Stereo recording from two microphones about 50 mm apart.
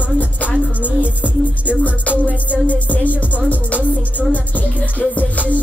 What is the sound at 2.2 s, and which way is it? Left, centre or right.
Music, left.